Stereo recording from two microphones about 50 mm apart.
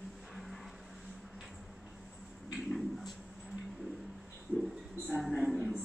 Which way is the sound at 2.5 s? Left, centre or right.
Centre.